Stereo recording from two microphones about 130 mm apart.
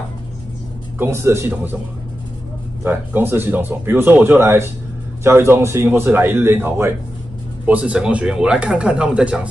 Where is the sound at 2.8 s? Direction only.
15° right (ahead or behind).